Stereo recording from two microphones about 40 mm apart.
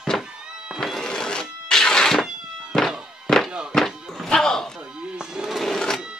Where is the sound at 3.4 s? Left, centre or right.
Right.